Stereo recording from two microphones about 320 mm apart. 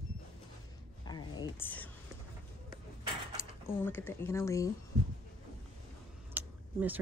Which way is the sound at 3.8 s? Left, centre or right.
Centre.